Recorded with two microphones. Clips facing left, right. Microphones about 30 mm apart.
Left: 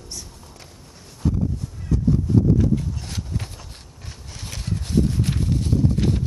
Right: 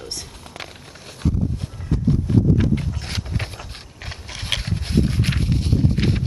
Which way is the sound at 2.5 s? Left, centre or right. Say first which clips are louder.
Even; right.